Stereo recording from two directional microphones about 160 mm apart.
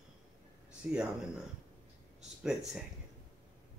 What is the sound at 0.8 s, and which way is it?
Speech, 10° right (ahead or behind).